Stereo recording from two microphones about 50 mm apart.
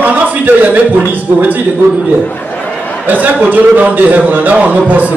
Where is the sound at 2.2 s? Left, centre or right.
Left.